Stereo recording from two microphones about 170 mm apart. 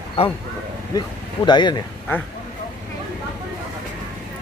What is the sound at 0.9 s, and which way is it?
Speech, 25° left (ahead or behind).